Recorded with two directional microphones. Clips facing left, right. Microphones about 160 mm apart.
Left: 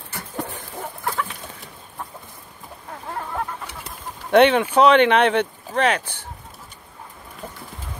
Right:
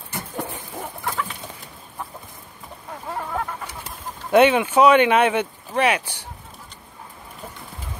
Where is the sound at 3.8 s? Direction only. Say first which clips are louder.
Right 1 dB; 5° right (ahead or behind).